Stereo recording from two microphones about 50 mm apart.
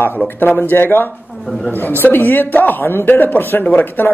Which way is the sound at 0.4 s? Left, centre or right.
Left.